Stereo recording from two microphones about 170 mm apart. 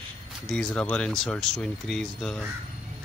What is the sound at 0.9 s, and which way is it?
Speech, 5° left (ahead or behind).